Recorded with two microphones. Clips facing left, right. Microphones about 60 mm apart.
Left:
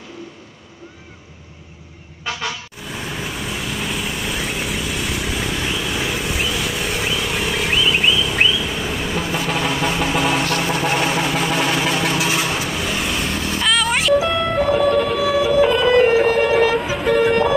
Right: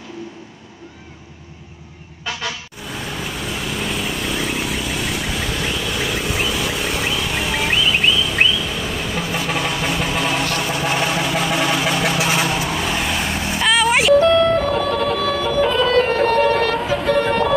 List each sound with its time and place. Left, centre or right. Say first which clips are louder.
3.1 s vehicle: even; centre
6.1 s a sound: right 1 dB; centre
9.5 s vehicle: left 2 dB; centre
12.2 s vehicle: right 1 dB; right
12.9 s vehicle: right 1 dB; centre
14.1 s emergency vehicle: right 5 dB; centre